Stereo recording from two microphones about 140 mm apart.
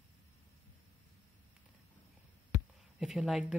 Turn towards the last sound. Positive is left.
turn(degrees=0)  # may be behind; listen again after turning